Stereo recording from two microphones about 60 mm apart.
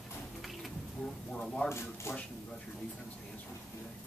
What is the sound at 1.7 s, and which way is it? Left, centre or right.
Speech, left.